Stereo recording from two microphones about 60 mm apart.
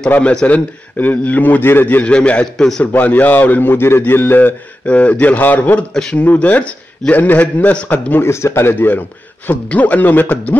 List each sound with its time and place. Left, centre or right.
0.2 s a man's voice: centre
0.9 s a man's voice: left
2.0 s a man's voice: left
2.5 s a man's voice: centre
2.8 s a man's voice: left
4.8 s a man's voice: left
8.2 s speech: left
8.7 s a man's voice: left